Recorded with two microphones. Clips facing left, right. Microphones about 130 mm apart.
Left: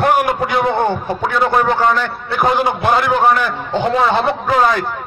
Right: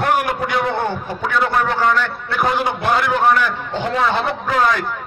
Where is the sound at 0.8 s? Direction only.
25° left (ahead or behind).